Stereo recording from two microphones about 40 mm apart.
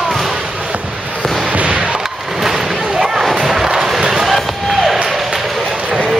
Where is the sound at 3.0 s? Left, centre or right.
Centre.